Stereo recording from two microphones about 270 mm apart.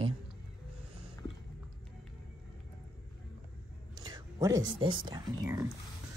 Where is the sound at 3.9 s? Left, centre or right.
Centre.